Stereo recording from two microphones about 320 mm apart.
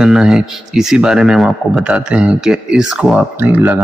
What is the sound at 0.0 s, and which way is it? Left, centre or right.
A man's voice, centre.